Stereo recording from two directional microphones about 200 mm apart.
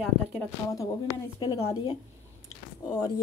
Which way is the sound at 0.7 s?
15° left (ahead or behind).